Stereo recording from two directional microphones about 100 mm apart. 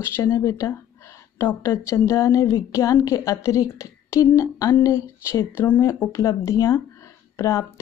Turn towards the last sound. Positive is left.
turn(degrees=30)  # may be behind; listen again after turning